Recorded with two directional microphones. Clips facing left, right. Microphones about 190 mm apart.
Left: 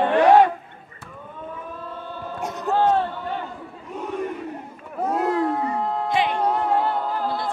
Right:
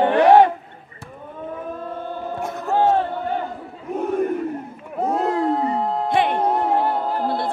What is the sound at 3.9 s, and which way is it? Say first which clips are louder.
Battle cry: right 7 dB; 50° right (ahead or behind).